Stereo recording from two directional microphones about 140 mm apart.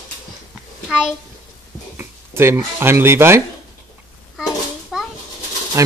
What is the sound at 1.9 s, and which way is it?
Speech, 15° right (ahead or behind).